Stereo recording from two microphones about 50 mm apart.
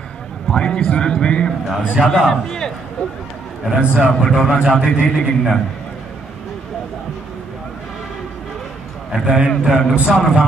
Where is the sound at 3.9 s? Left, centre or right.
Centre.